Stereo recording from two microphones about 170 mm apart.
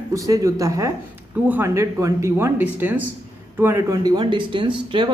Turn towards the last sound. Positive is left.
turn(degrees=-30)  # may be behind; listen again after turning